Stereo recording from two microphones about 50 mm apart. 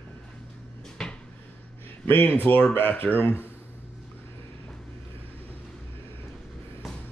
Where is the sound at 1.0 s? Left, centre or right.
Centre.